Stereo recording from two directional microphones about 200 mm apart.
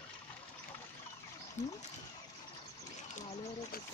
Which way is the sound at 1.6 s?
35° left (ahead or behind).